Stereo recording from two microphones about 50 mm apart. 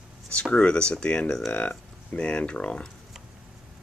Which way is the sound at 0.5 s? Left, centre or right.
Left.